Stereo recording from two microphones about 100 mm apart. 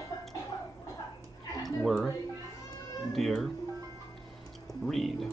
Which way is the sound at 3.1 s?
Centre (ahead or behind).